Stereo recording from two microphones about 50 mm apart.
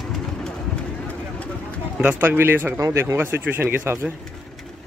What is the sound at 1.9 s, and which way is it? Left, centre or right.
Speech, right.